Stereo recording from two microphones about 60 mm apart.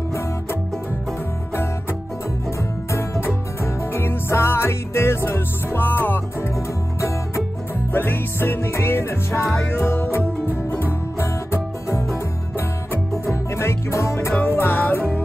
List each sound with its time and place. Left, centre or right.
1.5 s music: left
5.8 s music: left
6.5 s music: left
7.9 s music: left
13.2 s music: left
14.4 s music: left